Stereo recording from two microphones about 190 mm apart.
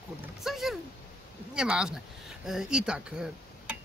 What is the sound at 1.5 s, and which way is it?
Speech, 5° right (ahead or behind).